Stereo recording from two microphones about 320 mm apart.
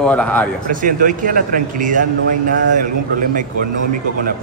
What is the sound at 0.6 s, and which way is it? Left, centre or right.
A man's voice, right.